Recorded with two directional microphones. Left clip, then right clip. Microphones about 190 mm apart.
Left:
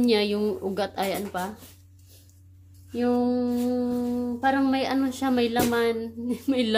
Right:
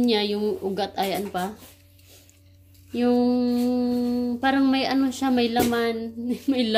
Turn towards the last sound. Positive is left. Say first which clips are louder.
# right 2 dB
turn(degrees=-5)  # may be behind; listen again after turning